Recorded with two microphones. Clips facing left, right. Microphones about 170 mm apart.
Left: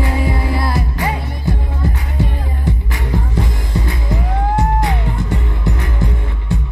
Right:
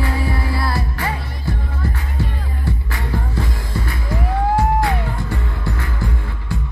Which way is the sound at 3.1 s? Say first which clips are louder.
Left 4 dB; 20° left (ahead or behind).